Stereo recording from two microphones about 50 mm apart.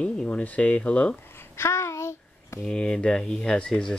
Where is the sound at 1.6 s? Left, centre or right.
Left.